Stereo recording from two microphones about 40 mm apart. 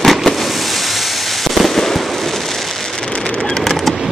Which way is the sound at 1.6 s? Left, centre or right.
Centre.